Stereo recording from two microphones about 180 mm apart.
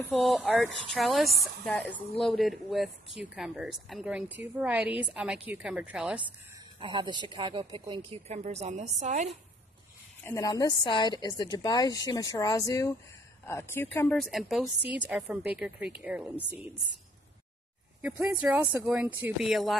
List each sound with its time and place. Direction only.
0.1 s speech: centre (ahead or behind)
6.8 s speech: 25° right (ahead or behind)
8.3 s a woman's voice: 35° right (ahead or behind)
10.2 s a woman's voice: 15° left (ahead or behind); by 16.7 s 10° right (ahead or behind)
18.0 s speech: 5° right (ahead or behind)